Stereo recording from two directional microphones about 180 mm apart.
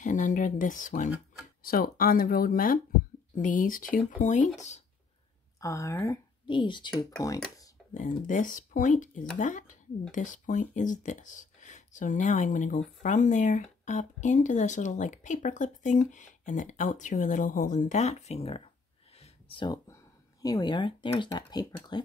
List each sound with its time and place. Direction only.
0.0 s speech: 45° left (ahead or behind)
5.6 s speech: 15° left (ahead or behind)
7.9 s speech: 45° left (ahead or behind)
19.1 s a sound: 30° left (ahead or behind)
20.4 s speech: 20° left (ahead or behind)